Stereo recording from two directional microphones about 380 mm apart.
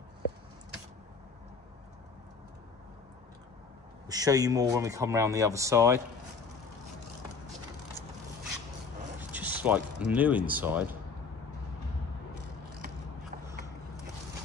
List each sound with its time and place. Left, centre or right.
4.1 s speech: centre
9.3 s speech: centre